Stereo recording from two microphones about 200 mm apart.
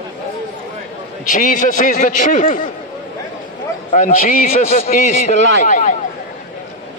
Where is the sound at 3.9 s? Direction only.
45° left (ahead or behind).